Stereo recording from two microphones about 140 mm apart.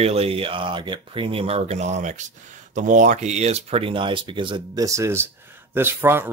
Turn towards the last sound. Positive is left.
turn(degrees=-15)  # may be behind; listen again after turning